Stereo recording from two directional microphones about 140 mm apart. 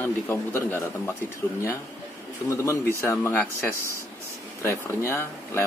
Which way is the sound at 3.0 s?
20° left (ahead or behind).